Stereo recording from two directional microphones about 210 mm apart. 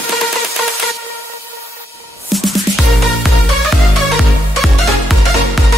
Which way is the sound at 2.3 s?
Centre (ahead or behind).